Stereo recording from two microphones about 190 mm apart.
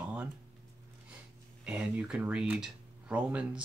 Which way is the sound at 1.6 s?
5° right (ahead or behind).